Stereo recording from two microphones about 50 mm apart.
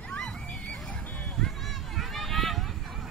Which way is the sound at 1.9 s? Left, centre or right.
Centre.